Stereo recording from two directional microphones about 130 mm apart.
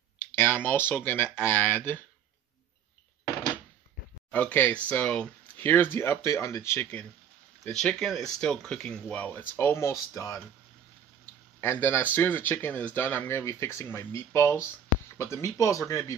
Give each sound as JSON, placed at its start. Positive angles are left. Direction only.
{"t": 0.2, "sound": "speech", "side_deg": 15}
{"t": 4.3, "sound": "speech", "side_deg": 10}
{"t": 7.6, "sound": "speech", "side_deg": 5}
{"t": 11.6, "sound": "speech", "side_deg": 15}